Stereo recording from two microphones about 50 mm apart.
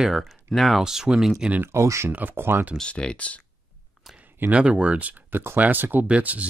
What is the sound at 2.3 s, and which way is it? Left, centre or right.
Speech, right.